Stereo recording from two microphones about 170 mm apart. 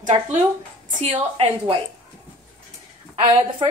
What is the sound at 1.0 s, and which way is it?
Speech, 35° right (ahead or behind).